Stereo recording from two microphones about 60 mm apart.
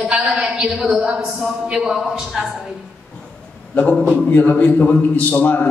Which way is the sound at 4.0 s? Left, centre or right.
Centre.